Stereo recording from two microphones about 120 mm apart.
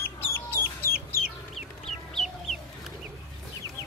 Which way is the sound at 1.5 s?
5° left (ahead or behind).